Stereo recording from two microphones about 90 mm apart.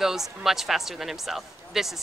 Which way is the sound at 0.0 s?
5° right (ahead or behind).